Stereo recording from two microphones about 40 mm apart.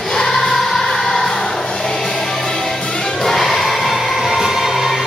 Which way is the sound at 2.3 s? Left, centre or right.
Centre.